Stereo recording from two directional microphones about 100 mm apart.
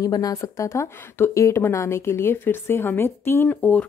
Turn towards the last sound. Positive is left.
turn(degrees=15)  # may be behind; listen again after turning